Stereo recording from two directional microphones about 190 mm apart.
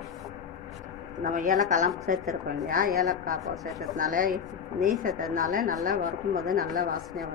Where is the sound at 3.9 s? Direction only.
45° right (ahead or behind).